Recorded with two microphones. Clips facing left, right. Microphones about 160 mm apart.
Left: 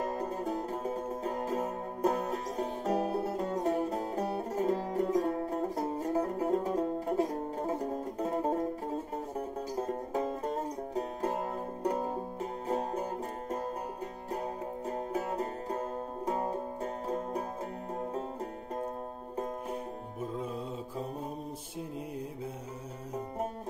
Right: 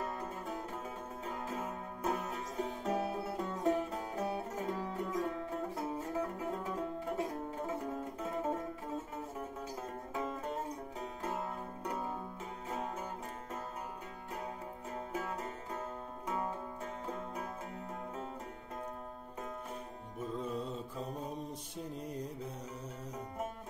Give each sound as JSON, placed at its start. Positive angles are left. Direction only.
{"t": 0.0, "sound": "music", "side_deg": 40}
{"t": 14.9, "sound": "music", "side_deg": 35}